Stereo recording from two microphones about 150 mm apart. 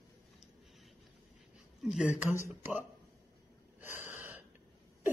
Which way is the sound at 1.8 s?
5° right (ahead or behind).